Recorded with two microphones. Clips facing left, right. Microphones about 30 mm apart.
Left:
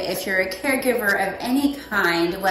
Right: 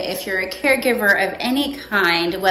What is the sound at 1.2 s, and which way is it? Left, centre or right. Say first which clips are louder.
A woman's voice: right 1 dB; right.